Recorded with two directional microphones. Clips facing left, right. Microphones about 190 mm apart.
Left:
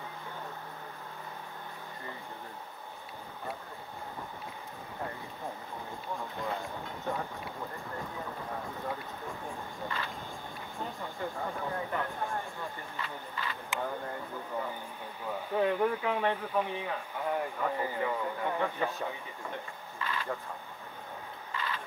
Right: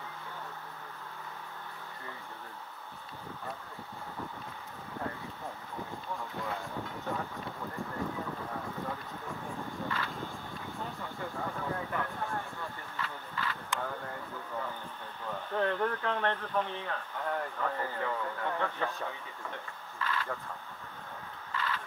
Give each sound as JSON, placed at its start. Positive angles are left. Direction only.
{"t": 9.8, "sound": "speech", "side_deg": 15}
{"t": 12.9, "sound": "vehicle", "side_deg": 15}
{"t": 15.2, "sound": "speech", "side_deg": 10}
{"t": 21.5, "sound": "a sound", "side_deg": 15}